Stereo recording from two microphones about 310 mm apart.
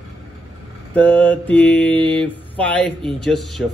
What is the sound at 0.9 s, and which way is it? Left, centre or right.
Speech, centre.